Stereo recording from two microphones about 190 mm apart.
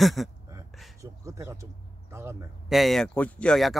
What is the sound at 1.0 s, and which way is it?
Speech, 15° right (ahead or behind).